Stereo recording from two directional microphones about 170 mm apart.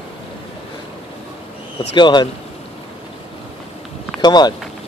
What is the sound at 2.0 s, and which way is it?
Speech, 25° left (ahead or behind).